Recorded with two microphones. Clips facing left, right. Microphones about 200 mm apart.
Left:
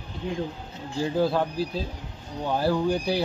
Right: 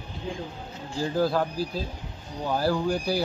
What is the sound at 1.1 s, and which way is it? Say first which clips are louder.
Speech: even; centre (ahead or behind).